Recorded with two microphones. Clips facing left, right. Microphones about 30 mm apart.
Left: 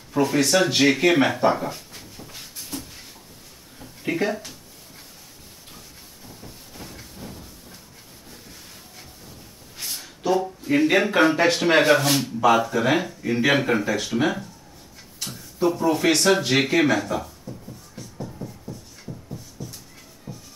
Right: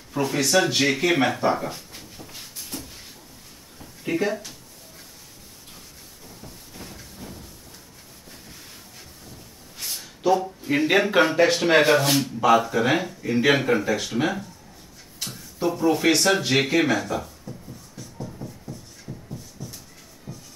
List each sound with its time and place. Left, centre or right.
0.1 s speech: centre
2.0 s a sound: centre
4.1 s speech: left
6.2 s a sound: centre
7.2 s train: centre
9.8 s a sound: centre
10.2 s speech: centre
10.6 s speech: centre
18.1 s music: centre
20.3 s music: centre